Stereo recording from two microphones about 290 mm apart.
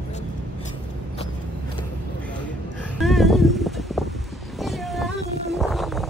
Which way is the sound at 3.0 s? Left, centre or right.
Centre.